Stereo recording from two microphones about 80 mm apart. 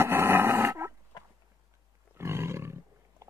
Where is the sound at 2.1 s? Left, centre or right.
Right.